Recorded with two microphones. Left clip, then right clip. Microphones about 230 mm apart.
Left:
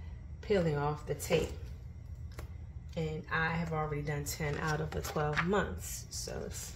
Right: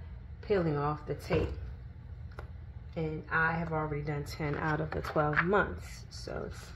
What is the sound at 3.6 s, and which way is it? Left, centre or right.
Speech, right.